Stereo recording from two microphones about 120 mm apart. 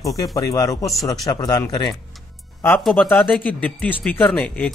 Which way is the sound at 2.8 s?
Centre (ahead or behind).